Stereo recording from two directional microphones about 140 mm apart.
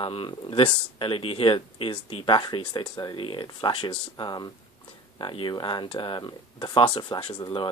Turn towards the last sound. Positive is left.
turn(degrees=35)  # may be behind; listen again after turning